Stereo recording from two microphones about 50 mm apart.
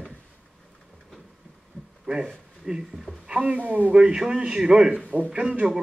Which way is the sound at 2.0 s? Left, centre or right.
Centre.